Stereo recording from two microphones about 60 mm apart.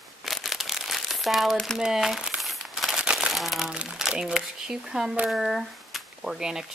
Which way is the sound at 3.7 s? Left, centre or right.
Centre.